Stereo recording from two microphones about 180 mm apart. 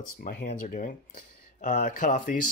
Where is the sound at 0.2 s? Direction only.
60° left (ahead or behind).